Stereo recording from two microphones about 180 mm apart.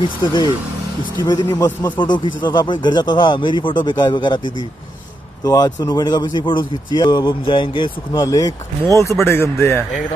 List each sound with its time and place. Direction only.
0.2 s speech: 25° left (ahead or behind)
5.4 s speech: 20° left (ahead or behind)